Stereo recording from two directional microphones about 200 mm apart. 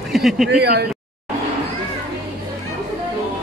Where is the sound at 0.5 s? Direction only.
50° right (ahead or behind).